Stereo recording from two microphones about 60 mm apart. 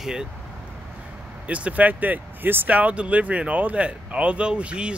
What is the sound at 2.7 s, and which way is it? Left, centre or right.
Speech, right.